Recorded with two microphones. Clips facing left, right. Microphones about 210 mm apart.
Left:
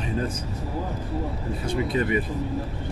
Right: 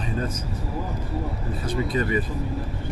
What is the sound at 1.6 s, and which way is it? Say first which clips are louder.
Speech: even; 25° left (ahead or behind).